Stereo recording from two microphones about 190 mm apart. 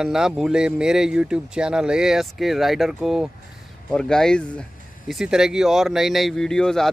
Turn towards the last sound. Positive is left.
turn(degrees=5)  # may be behind; listen again after turning